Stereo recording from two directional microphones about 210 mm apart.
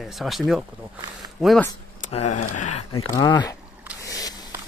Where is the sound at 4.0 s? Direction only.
15° left (ahead or behind).